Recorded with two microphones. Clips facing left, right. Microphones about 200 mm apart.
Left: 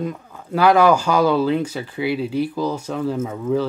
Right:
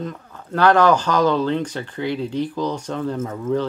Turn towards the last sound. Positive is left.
turn(degrees=5)  # may be behind; listen again after turning